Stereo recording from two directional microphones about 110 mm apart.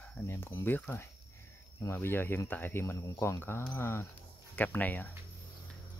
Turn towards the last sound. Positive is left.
turn(degrees=15)  # may be behind; listen again after turning